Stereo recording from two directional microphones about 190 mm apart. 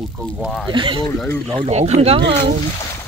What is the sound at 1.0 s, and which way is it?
Speech, 15° left (ahead or behind).